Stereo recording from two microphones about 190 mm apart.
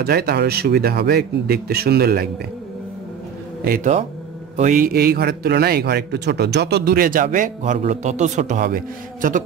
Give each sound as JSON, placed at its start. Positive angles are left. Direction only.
{"t": 0.0, "sound": "speech", "side_deg": -55}
{"t": 3.6, "sound": "speech", "side_deg": -45}